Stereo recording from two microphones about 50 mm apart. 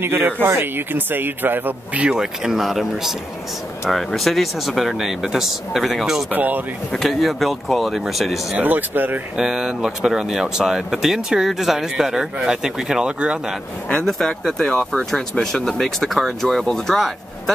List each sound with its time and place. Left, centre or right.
0.0 s a man's voice: right
2.0 s speech: centre
6.3 s speech: right
7.0 s speech: centre
8.5 s speech: right
9.4 s speech: centre
13.9 s speech: centre